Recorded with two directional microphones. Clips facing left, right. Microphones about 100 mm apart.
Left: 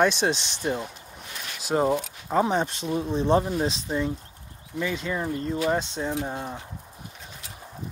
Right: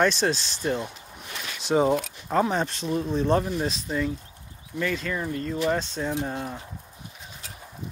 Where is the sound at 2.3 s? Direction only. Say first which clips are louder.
Left 1 dB; 15° left (ahead or behind).